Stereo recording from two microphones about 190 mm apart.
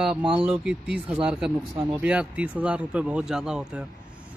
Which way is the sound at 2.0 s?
5° right (ahead or behind).